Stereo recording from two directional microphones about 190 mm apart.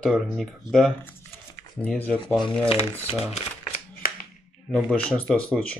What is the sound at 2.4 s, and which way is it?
Speech, 30° left (ahead or behind).